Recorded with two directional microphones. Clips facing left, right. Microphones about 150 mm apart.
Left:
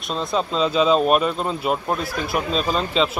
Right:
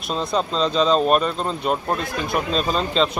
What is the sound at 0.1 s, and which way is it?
Speech, centre (ahead or behind).